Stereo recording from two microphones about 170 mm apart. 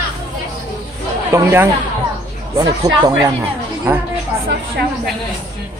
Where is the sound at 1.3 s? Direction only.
15° right (ahead or behind).